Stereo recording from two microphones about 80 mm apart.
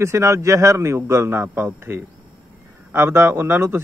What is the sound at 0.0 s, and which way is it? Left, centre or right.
A man's voice, right.